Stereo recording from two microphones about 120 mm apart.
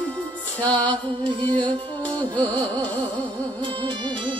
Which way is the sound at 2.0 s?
10° left (ahead or behind).